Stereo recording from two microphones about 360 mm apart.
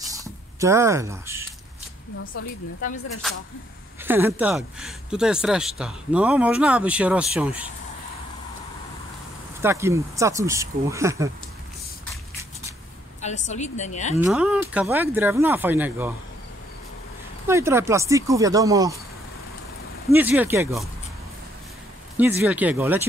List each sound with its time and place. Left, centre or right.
0.0 s squish: centre
4.0 s speech: centre
9.6 s speech: centre
13.2 s a woman's voice: centre
14.1 s speech: centre
17.5 s speech: centre
20.1 s speech: centre
22.1 s speech: centre